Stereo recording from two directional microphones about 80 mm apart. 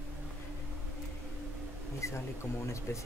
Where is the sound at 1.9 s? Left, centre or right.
Left.